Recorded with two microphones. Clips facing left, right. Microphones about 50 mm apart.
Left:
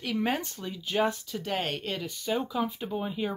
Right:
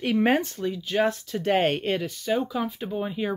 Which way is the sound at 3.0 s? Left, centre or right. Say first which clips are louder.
Right 4 dB; centre.